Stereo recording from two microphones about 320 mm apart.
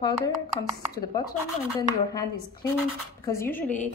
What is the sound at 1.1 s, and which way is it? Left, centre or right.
Speech, centre.